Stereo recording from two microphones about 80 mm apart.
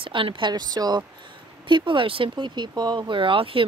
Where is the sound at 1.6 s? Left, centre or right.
Right.